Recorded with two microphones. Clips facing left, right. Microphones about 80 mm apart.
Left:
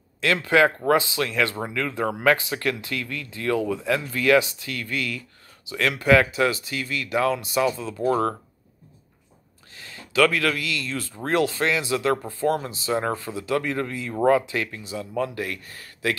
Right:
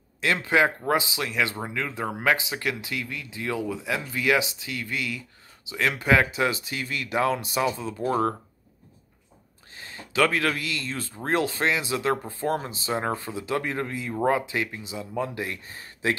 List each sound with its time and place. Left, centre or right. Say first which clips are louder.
0.2 s speech: left 3 dB; right
9.8 s speech: left 3 dB; right